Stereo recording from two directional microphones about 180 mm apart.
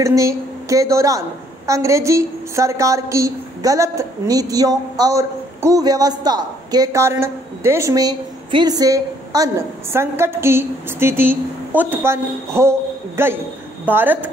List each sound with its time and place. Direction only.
0.0 s a woman's voice: 15° right (ahead or behind)